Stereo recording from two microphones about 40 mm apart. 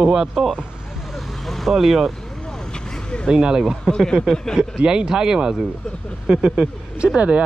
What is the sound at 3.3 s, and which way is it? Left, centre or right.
Speech, centre.